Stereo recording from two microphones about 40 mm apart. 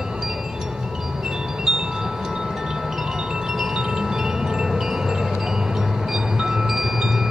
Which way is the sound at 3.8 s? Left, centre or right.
Centre.